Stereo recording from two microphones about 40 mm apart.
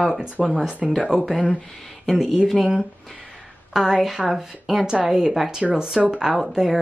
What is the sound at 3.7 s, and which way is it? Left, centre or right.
A woman's voice, centre.